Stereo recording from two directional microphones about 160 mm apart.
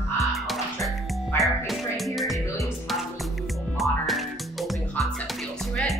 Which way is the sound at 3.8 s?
Centre (ahead or behind).